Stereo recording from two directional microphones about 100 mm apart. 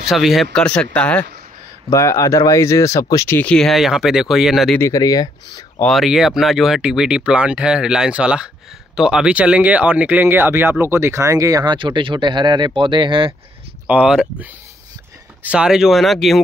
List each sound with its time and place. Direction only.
0.0 s speech: 5° right (ahead or behind); by 1.2 s 10° left (ahead or behind)
1.9 s speech: 30° left (ahead or behind)
3.3 s speech: 10° left (ahead or behind)
4.7 s speech: 30° left (ahead or behind)
5.9 s speech: centre (ahead or behind); by 11.6 s 35° right (ahead or behind)
11.6 s speech: 55° right (ahead or behind)
13.8 s speech: 10° right (ahead or behind)
15.4 s speech: 10° right (ahead or behind)